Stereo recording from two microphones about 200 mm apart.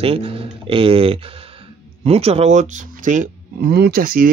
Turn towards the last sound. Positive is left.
turn(degrees=-45)  # may be behind; listen again after turning